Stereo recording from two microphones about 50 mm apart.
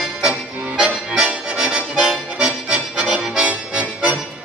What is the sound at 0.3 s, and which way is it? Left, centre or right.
Accordion, right.